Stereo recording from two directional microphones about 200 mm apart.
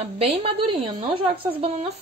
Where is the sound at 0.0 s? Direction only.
30° right (ahead or behind).